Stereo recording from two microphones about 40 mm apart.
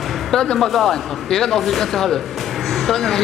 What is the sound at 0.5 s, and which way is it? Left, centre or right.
Speech, centre.